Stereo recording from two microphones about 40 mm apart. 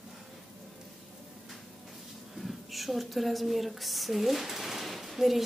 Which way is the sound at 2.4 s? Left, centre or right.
Centre.